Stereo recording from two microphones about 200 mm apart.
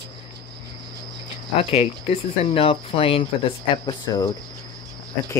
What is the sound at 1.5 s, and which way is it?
Speech, 30° left (ahead or behind).